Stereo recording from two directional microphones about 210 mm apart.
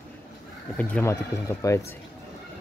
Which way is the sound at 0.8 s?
10° left (ahead or behind).